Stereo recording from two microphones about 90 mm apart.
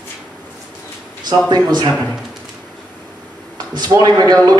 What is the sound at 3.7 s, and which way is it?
Speech, 50° right (ahead or behind).